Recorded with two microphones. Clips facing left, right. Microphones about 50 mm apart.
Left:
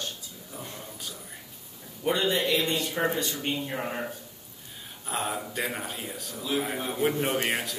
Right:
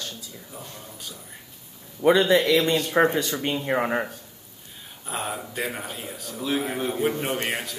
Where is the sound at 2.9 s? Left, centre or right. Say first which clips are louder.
Right 7 dB; right.